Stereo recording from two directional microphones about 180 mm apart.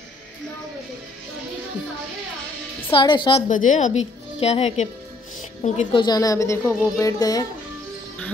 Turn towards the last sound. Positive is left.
turn(degrees=20)  # may be behind; listen again after turning